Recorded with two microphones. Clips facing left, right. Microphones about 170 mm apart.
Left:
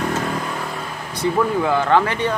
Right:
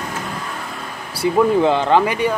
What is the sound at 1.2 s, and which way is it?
Speech, 15° right (ahead or behind).